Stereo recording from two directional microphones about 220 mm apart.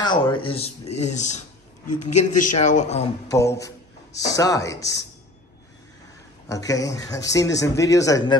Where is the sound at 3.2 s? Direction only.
15° left (ahead or behind).